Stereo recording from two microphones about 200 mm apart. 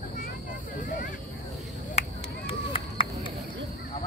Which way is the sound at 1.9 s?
30° left (ahead or behind).